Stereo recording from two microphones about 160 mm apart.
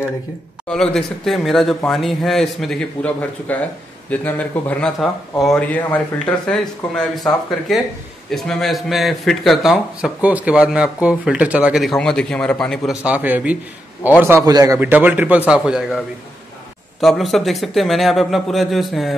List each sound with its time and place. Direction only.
0.7 s a man's voice: 5° left (ahead or behind); by 14.8 s 20° right (ahead or behind)
14.8 s a man's voice: 10° right (ahead or behind)
17.0 s speech: centre (ahead or behind)